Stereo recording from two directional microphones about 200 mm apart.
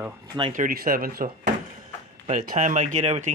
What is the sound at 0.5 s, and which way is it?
Speech, 45° right (ahead or behind).